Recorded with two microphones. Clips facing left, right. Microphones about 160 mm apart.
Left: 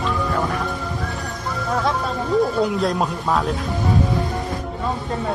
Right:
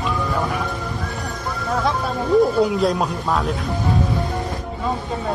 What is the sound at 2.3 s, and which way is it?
Speech, centre (ahead or behind).